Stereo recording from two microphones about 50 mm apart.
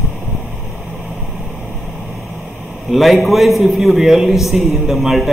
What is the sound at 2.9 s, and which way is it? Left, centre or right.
A man's voice, centre.